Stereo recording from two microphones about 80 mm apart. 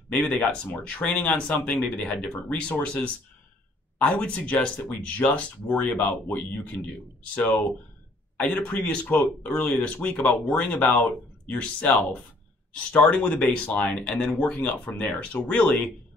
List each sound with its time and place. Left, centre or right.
0.1 s speech: centre